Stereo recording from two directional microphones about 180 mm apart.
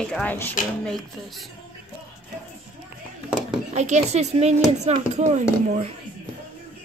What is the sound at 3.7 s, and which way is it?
Speech, 40° right (ahead or behind).